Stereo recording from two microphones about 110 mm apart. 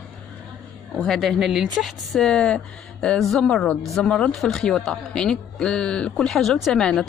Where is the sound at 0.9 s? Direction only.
5° left (ahead or behind).